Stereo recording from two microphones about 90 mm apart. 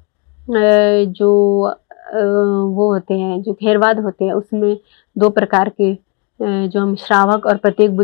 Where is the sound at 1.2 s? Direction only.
25° left (ahead or behind).